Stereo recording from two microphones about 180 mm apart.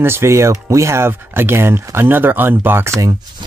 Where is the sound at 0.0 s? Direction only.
15° right (ahead or behind).